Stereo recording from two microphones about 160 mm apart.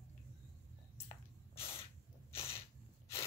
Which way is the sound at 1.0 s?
35° left (ahead or behind).